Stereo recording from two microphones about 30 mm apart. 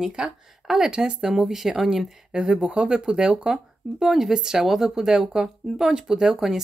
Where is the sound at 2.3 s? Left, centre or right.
Right.